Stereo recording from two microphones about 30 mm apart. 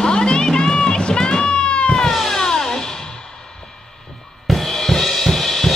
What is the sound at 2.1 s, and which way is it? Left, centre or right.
Music, centre.